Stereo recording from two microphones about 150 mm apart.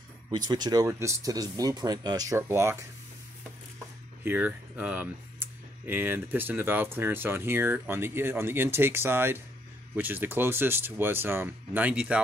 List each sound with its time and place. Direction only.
0.5 s speech: 25° right (ahead or behind)
4.2 s speech: 10° right (ahead or behind)